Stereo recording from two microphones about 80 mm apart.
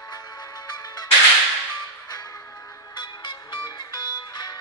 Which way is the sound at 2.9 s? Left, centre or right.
Left.